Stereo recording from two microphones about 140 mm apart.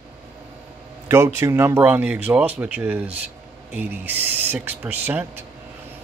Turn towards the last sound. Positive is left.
turn(degrees=-15)  # may be behind; listen again after turning